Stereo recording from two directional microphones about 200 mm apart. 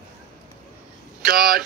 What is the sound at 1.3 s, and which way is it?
Speech, 50° right (ahead or behind).